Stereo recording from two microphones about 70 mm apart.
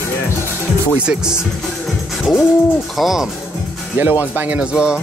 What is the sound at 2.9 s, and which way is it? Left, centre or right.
Speech, centre.